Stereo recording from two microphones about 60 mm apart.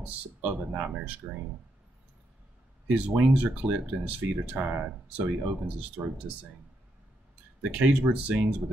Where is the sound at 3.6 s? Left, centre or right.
Right.